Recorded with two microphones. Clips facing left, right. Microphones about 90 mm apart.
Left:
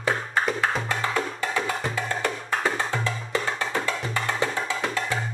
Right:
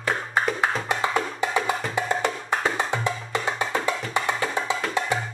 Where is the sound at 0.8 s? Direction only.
20° right (ahead or behind).